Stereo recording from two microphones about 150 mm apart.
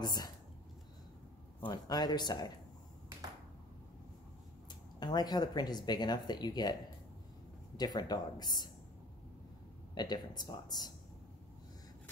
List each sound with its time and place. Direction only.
0.0 s speech: 25° left (ahead or behind)
1.7 s speech: 25° left (ahead or behind)
5.0 s speech: 30° left (ahead or behind)
9.9 s speech: 30° left (ahead or behind)